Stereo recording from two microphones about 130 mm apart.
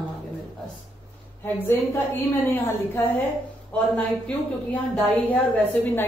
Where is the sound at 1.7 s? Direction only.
15° left (ahead or behind).